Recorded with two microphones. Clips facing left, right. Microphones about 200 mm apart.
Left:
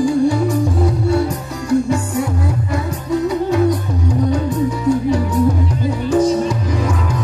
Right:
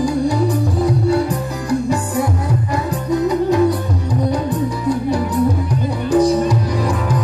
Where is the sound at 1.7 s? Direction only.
35° right (ahead or behind).